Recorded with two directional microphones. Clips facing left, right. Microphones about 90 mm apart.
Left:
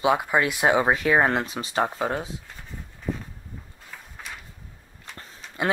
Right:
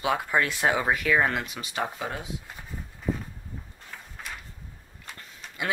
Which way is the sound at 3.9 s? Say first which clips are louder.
Even; centre (ahead or behind).